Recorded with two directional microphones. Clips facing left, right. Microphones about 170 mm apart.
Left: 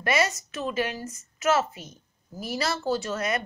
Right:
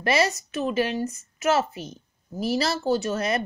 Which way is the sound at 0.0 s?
30° right (ahead or behind).